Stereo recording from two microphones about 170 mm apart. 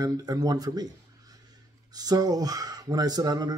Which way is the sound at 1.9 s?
20° right (ahead or behind).